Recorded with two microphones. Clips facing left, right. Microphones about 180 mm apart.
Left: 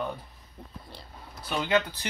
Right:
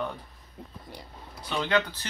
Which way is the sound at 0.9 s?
15° right (ahead or behind).